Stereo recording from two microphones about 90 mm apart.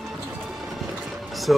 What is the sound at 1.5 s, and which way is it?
Speech, 5° right (ahead or behind).